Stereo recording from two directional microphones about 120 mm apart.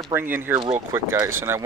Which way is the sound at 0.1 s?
20° right (ahead or behind).